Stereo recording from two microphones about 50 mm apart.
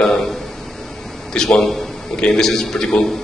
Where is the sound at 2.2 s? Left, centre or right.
Centre.